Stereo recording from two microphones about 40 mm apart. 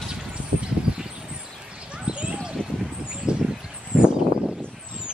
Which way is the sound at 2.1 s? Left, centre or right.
Right.